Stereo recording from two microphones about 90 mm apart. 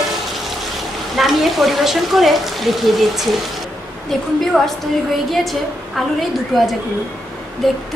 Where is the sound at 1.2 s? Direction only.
Centre (ahead or behind).